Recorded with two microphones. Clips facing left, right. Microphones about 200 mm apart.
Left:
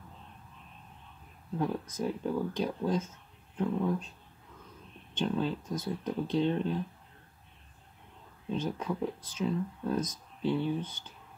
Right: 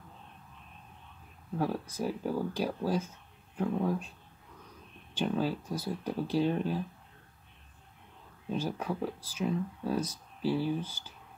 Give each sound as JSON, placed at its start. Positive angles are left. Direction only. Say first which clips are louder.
{"t": 2.0, "sound": "speech", "louder": "left 1 dB", "side_deg": -10}
{"t": 5.1, "sound": "speech", "louder": "even", "side_deg": -10}
{"t": 8.5, "sound": "speech", "louder": "even", "side_deg": -10}
{"t": 10.8, "sound": "speech", "louder": "left 1 dB", "side_deg": -30}